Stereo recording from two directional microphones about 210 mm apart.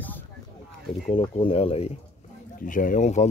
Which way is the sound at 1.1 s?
25° left (ahead or behind).